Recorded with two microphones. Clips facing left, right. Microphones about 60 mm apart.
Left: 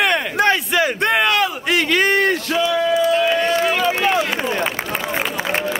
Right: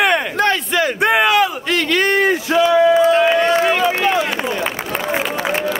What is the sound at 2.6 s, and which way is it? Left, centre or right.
Speech, right.